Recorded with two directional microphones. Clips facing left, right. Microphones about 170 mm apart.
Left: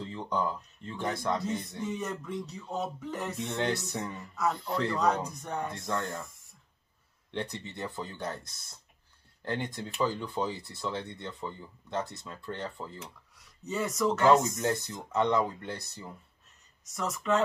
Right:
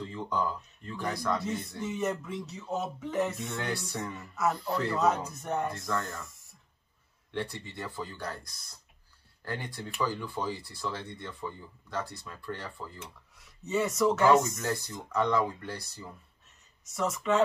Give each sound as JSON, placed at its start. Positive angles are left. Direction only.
{"t": 0.1, "sound": "speech", "side_deg": 20}
{"t": 1.8, "sound": "a sound", "side_deg": 0}
{"t": 3.4, "sound": "speech", "side_deg": 20}
{"t": 4.4, "sound": "a sound", "side_deg": -5}
{"t": 5.8, "sound": "speech", "side_deg": 25}
{"t": 7.2, "sound": "speech", "side_deg": 20}
{"t": 13.0, "sound": "speech", "side_deg": 0}
{"t": 14.4, "sound": "speech", "side_deg": 20}
{"t": 16.8, "sound": "a sound", "side_deg": 0}